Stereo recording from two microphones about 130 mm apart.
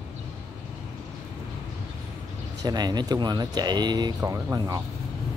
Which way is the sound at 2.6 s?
30° right (ahead or behind).